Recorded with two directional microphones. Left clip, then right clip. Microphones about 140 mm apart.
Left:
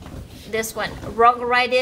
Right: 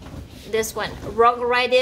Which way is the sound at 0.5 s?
10° right (ahead or behind).